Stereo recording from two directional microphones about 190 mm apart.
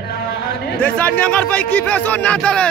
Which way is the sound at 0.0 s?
55° left (ahead or behind).